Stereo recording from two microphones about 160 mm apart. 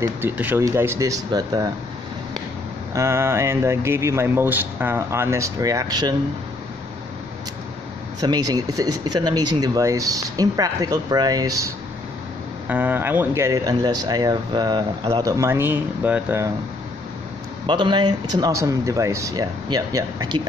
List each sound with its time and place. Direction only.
0.0 s speech: 15° right (ahead or behind)
2.9 s speech: 15° right (ahead or behind)
8.2 s speech: 25° right (ahead or behind)
17.6 s speech: 30° right (ahead or behind)